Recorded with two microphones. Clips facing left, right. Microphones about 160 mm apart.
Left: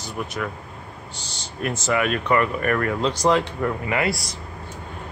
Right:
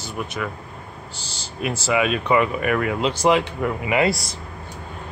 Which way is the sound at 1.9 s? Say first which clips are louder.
Right 2 dB; 15° right (ahead or behind).